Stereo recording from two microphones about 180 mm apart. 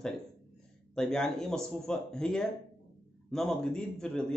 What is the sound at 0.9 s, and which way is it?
Speech, 5° left (ahead or behind).